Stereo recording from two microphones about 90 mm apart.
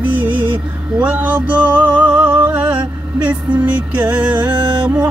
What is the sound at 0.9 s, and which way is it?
Music, 15° right (ahead or behind).